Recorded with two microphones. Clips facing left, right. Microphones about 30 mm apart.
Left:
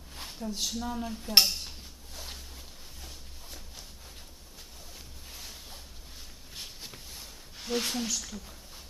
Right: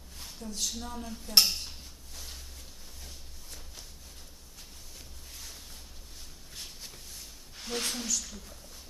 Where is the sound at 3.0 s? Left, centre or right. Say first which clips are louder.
Left 2 dB; centre.